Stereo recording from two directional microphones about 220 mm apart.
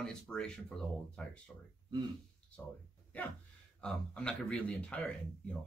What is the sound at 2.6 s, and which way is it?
Speech, centre (ahead or behind).